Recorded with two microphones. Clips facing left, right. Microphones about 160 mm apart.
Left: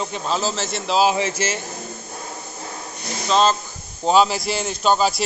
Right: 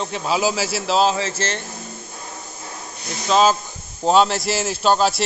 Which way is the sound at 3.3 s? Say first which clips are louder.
Right 2 dB; 5° right (ahead or behind).